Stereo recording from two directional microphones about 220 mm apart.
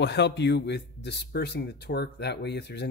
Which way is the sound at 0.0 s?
50° left (ahead or behind).